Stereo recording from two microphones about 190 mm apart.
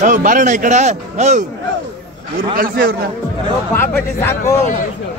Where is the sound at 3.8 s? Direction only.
10° left (ahead or behind).